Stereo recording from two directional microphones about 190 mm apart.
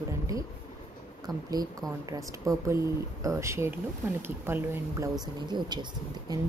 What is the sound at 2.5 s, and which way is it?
A woman's voice, 20° right (ahead or behind).